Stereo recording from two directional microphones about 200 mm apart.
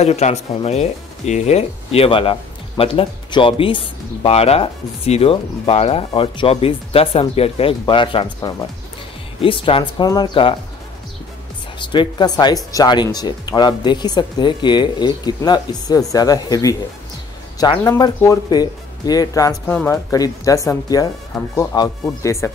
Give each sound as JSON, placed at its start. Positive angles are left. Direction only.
{"t": 0.0, "sound": "speech", "side_deg": 35}
{"t": 11.8, "sound": "speech", "side_deg": 25}